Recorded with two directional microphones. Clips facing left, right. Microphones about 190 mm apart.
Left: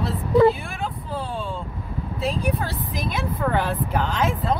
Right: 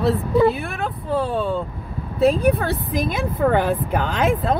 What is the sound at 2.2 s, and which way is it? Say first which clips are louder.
Speech: right 9 dB; 55° right (ahead or behind).